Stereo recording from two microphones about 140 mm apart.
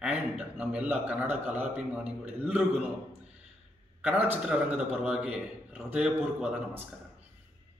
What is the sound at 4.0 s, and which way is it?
A man's voice, 10° right (ahead or behind).